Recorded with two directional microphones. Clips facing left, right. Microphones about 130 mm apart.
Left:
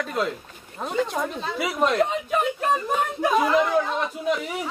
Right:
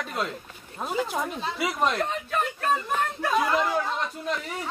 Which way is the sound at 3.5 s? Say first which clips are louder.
Left 4 dB; centre (ahead or behind).